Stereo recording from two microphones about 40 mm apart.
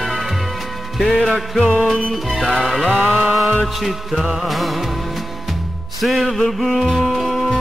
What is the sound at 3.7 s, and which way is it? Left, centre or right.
Music, centre.